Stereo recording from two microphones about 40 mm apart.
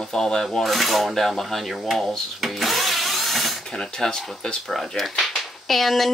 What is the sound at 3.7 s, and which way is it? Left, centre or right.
Speech, centre.